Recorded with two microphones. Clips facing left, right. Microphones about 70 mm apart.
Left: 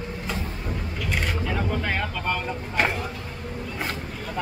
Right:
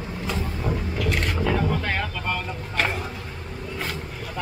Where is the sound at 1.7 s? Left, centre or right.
Centre.